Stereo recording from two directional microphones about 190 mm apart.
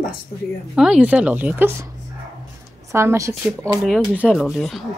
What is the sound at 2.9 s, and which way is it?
Speech, 15° right (ahead or behind).